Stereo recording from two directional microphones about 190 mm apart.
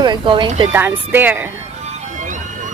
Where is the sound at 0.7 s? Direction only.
10° right (ahead or behind).